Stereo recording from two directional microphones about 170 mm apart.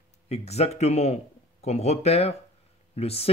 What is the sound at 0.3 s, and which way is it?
A man's voice, 40° left (ahead or behind).